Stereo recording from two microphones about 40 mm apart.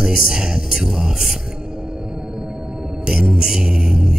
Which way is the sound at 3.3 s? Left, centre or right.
Centre.